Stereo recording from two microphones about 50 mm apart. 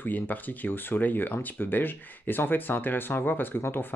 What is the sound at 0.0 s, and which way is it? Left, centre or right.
Speech, left.